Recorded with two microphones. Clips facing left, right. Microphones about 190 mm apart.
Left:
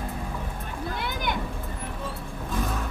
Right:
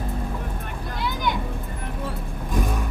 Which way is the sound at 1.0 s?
55° left (ahead or behind).